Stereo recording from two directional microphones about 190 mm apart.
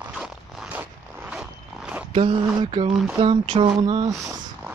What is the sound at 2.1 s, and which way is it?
Speech, 25° right (ahead or behind).